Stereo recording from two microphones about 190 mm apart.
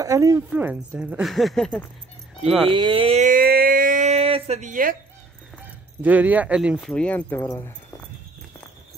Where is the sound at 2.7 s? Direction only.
25° right (ahead or behind).